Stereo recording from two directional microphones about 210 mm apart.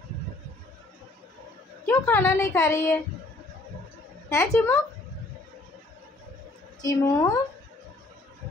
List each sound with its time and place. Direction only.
1.9 s a woman's voice: 10° left (ahead or behind)
4.3 s a woman's voice: 15° left (ahead or behind)
6.8 s a woman's voice: 15° left (ahead or behind)